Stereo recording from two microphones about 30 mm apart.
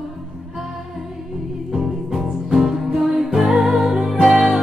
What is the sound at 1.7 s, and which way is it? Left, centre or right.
Music, centre.